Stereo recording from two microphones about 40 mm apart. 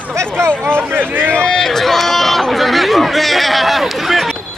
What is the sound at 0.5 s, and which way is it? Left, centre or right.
Speech, left.